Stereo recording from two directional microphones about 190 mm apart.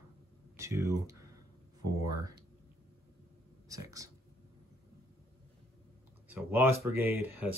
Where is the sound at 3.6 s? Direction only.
20° right (ahead or behind).